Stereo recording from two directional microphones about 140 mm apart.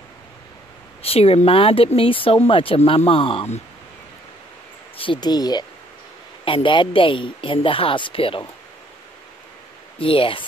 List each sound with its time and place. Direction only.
1.0 s speech: 45° left (ahead or behind)
4.9 s speech: 35° left (ahead or behind)
9.9 s speech: 40° left (ahead or behind)